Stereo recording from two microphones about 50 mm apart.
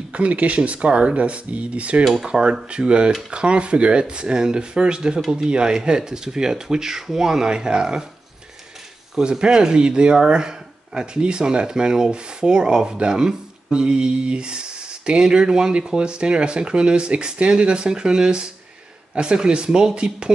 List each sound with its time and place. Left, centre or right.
0.1 s speech: right
9.2 s speech: centre